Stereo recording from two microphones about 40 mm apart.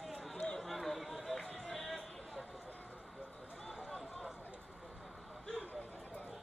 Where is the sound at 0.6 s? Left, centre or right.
Centre.